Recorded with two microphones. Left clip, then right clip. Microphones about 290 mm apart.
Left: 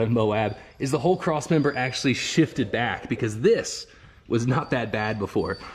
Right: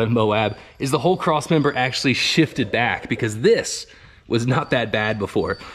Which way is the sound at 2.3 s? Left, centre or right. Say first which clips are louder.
Right 4 dB; centre.